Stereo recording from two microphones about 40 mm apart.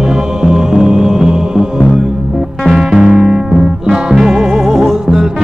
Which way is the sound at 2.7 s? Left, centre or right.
Centre.